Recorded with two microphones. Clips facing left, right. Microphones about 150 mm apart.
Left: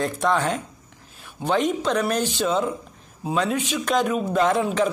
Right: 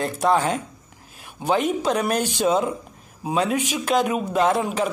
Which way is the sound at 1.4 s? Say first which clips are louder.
Right 1 dB; 10° right (ahead or behind).